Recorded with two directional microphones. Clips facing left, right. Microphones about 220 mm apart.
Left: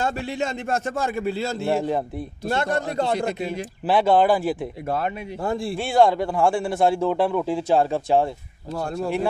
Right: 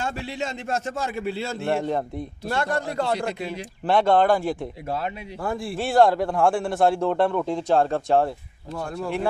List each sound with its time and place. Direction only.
0.0 s a man's voice: 50° left (ahead or behind)
1.6 s a man's voice: 5° left (ahead or behind)
2.4 s a man's voice: 20° left (ahead or behind)
3.8 s a man's voice: 5° left (ahead or behind)
4.8 s a man's voice: 55° left (ahead or behind)
5.4 s a man's voice: 25° left (ahead or behind)
5.7 s a man's voice: centre (ahead or behind)
8.7 s speech: 30° left (ahead or behind)